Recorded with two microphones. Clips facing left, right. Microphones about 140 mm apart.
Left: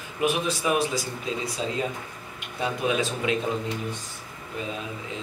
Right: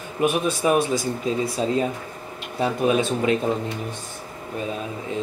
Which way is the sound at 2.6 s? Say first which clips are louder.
Right 5 dB; 40° right (ahead or behind).